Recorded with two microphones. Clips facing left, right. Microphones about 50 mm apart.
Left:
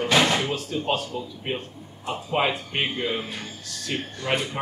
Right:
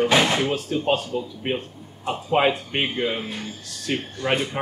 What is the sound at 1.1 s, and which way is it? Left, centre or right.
Speech, right.